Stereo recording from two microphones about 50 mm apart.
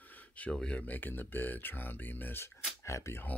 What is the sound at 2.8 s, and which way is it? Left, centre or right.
Speech, left.